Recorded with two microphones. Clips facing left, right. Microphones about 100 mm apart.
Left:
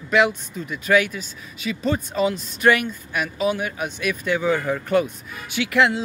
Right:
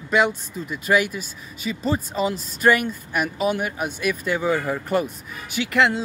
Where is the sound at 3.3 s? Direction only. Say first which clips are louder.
Left 1 dB; 50° right (ahead or behind).